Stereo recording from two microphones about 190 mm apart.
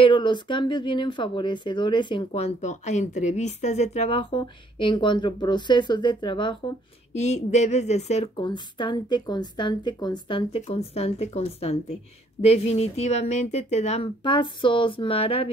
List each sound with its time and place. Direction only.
0.0 s speech: 25° left (ahead or behind)
7.2 s a woman's voice: 35° left (ahead or behind)